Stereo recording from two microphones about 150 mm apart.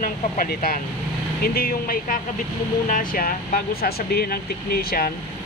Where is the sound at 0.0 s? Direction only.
75° left (ahead or behind); by 5.1 s 90° left.